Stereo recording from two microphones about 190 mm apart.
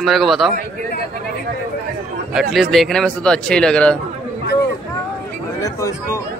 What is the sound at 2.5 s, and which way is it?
Speech, centre (ahead or behind).